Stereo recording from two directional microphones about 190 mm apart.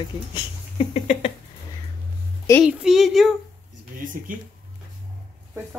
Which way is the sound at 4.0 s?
45° right (ahead or behind).